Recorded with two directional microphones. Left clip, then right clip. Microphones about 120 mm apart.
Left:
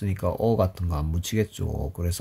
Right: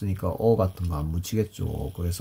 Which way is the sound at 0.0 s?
15° left (ahead or behind).